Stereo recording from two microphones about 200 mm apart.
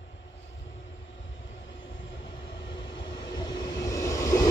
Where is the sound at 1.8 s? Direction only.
25° left (ahead or behind).